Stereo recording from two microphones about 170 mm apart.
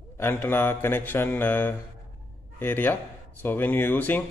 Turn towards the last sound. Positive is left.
turn(degrees=10)  # may be behind; listen again after turning